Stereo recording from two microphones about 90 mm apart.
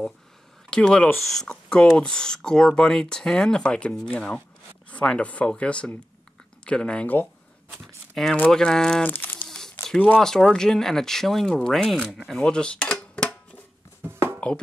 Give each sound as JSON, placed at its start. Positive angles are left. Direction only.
{"t": 0.7, "sound": "speech", "side_deg": 10}
{"t": 7.8, "sound": "speech", "side_deg": 0}
{"t": 9.0, "sound": "crumpling", "side_deg": 20}
{"t": 9.8, "sound": "speech", "side_deg": 10}
{"t": 12.4, "sound": "dishes", "side_deg": 10}
{"t": 14.0, "sound": "a sound", "side_deg": -25}